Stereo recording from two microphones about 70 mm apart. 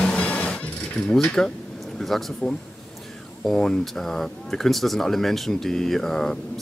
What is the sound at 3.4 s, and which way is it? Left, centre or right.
Speech, centre.